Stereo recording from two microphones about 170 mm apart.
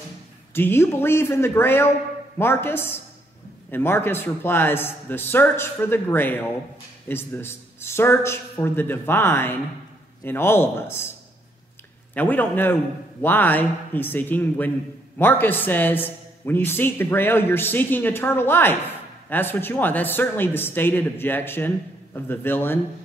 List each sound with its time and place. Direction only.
0.6 s a man's voice: 15° left (ahead or behind)